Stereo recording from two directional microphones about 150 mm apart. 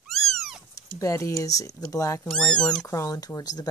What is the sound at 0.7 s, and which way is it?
Speech, 20° left (ahead or behind).